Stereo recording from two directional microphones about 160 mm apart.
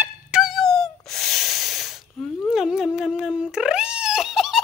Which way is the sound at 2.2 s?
Centre (ahead or behind).